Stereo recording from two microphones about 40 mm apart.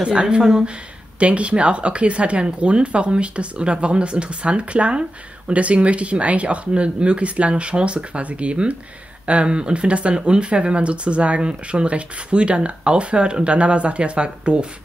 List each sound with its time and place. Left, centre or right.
0.0 s speech: right
0.4 s speech: centre
1.2 s speech: right